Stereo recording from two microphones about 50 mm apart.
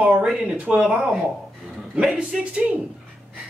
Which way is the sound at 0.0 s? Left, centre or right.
Right.